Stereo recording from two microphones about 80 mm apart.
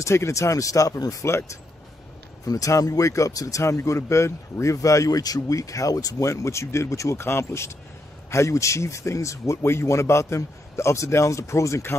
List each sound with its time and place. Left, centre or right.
0.0 s speech: left